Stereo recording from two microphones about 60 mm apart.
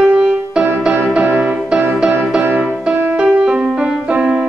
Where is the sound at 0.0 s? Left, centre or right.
Centre.